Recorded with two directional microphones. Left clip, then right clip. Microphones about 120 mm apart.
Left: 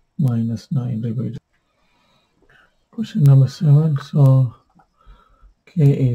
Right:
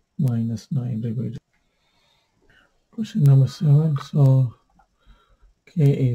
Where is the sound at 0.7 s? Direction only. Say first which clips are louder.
Left 3 dB; 45° right (ahead or behind).